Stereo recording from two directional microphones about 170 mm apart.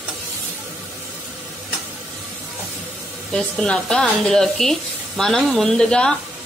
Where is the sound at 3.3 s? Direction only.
5° left (ahead or behind).